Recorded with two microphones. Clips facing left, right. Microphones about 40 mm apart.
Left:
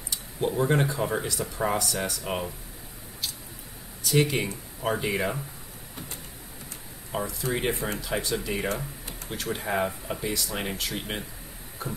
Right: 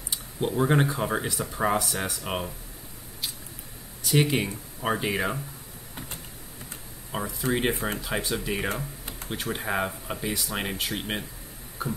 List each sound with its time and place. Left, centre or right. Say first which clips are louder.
0.1 s speech: even; centre
4.0 s speech: even; centre
7.1 s speech: right 1 dB; centre